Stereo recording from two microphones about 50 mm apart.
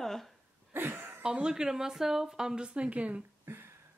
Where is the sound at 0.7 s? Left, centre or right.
Right.